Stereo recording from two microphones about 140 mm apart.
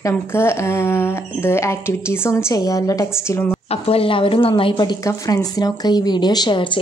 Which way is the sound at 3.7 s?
45° left (ahead or behind).